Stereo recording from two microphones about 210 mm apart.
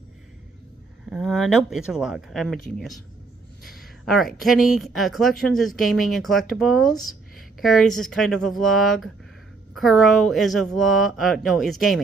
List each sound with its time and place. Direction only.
1.1 s a woman's voice: centre (ahead or behind)
4.0 s a woman's voice: centre (ahead or behind)